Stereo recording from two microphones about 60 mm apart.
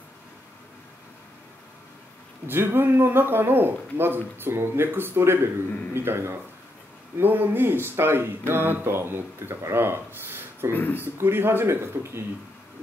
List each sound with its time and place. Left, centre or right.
2.4 s speech: right
10.7 s speech: left
11.1 s speech: right